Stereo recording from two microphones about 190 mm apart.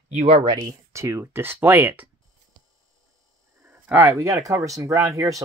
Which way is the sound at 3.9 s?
10° right (ahead or behind).